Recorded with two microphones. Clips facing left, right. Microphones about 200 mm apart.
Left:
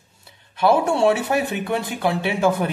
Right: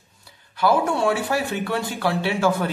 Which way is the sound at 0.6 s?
25° left (ahead or behind).